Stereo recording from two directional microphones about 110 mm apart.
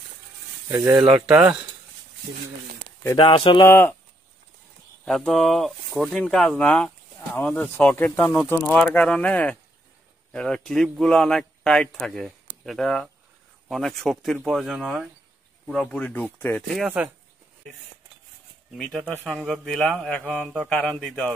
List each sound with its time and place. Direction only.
0.7 s speech: 20° right (ahead or behind)
0.9 s speech: 5° right (ahead or behind)
3.2 s speech: 50° left (ahead or behind)
3.6 s speech: 20° left (ahead or behind)
5.0 s speech: 5° left (ahead or behind)
7.7 s mantra: 20° left (ahead or behind)
8.6 s speech: 5° left (ahead or behind)
8.9 s mantra: 10° left (ahead or behind)
10.3 s speech: 5° left (ahead or behind)
15.6 s mantra: 5° left (ahead or behind)
18.8 s mantra: 5° left (ahead or behind)